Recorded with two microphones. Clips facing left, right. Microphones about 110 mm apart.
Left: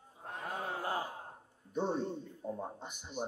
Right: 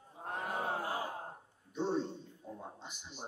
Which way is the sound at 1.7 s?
50° left (ahead or behind).